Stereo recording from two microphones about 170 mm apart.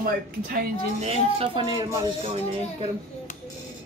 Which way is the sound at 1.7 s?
25° right (ahead or behind).